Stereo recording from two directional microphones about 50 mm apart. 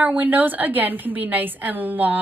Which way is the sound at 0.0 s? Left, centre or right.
Right.